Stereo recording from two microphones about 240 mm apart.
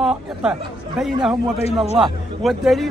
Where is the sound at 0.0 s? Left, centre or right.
Centre.